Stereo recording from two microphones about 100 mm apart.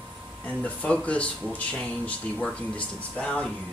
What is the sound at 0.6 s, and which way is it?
Speech, 15° left (ahead or behind).